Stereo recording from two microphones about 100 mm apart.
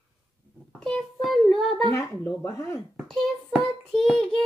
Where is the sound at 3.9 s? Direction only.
5° left (ahead or behind).